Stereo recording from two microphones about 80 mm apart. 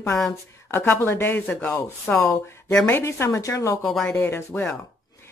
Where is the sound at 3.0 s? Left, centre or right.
Left.